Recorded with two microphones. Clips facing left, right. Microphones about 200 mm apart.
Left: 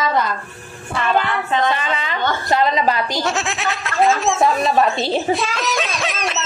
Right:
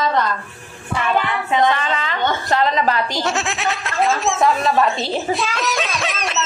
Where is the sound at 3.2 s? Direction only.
Centre (ahead or behind).